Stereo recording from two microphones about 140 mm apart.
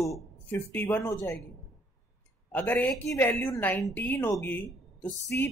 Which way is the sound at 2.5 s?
10° left (ahead or behind).